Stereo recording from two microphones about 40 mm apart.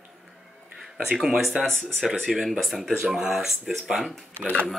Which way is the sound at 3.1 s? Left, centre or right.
Centre.